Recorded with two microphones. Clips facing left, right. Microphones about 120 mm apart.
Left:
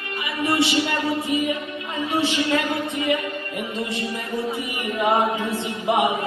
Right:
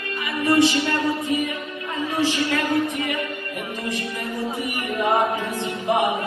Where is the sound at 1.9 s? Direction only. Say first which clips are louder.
Even; 20° left (ahead or behind).